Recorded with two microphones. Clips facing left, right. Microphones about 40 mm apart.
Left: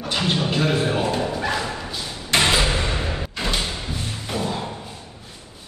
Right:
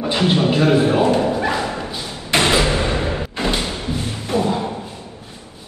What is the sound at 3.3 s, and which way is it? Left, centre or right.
Thump, right.